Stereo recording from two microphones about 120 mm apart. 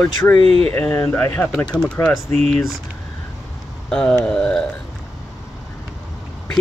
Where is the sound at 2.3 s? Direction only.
60° right (ahead or behind).